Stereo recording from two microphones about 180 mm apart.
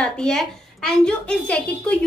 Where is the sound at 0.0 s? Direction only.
5° left (ahead or behind).